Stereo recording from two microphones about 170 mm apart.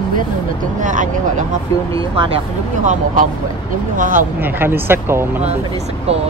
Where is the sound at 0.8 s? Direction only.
50° right (ahead or behind).